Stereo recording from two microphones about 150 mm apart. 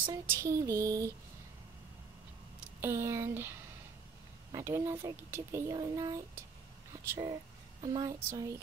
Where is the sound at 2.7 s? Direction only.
15° right (ahead or behind).